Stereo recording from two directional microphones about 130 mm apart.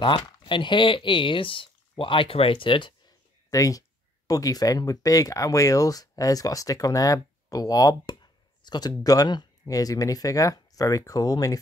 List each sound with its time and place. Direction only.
0.0 s speech: 40° left (ahead or behind)